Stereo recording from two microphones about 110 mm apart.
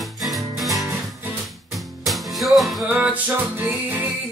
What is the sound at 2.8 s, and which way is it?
Music, 15° right (ahead or behind).